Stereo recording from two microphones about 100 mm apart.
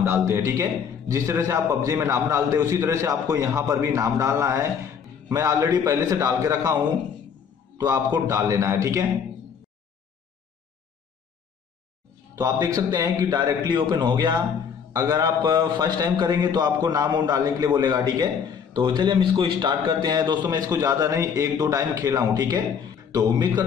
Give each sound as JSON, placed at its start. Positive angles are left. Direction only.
{"t": 0.0, "sound": "a man's voice", "side_deg": -25}
{"t": 7.7, "sound": "a man's voice", "side_deg": -35}
{"t": 12.4, "sound": "a man's voice", "side_deg": -35}
{"t": 14.9, "sound": "a man's voice", "side_deg": -35}
{"t": 15.4, "sound": "a man's voice", "side_deg": -45}